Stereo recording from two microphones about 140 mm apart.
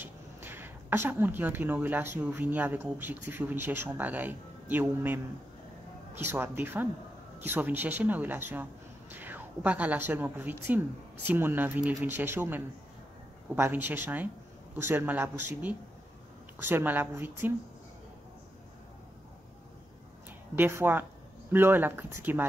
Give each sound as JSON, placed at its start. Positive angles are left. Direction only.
{"t": 0.0, "sound": "a woman's voice", "side_deg": -15}
{"t": 20.5, "sound": "speech", "side_deg": -15}